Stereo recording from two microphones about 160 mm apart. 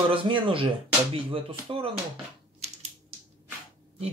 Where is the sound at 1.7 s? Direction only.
35° right (ahead or behind).